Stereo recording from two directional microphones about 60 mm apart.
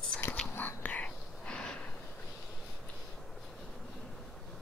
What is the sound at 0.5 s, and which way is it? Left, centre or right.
Whispering, left.